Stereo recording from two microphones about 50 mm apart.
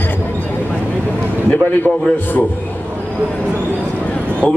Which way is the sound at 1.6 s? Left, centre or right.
Left.